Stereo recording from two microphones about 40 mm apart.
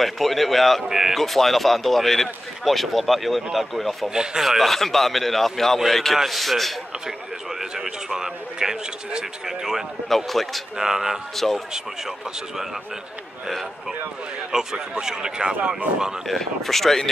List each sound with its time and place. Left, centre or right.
0.0 s speech: centre
0.8 s a man's voice: centre
1.1 s speech: centre
4.1 s a man's voice: centre
4.5 s speech: centre
7.1 s a man's voice: centre
10.0 s speech: centre
10.8 s a man's voice: centre
11.3 s speech: centre
14.5 s a man's voice: centre
16.3 s speech: centre